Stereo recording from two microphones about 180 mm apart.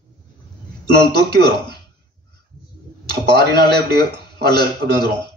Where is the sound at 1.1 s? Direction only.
25° left (ahead or behind).